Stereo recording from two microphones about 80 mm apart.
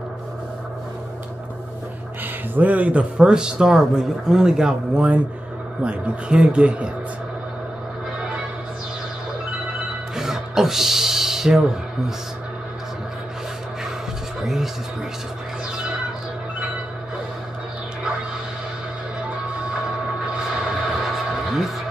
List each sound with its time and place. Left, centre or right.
2.5 s a man's voice: centre
10.1 s music: centre
14.4 s speech: centre
21.0 s a sound: centre